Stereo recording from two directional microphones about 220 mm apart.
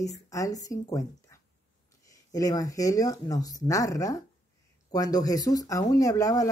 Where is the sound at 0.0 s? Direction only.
15° left (ahead or behind).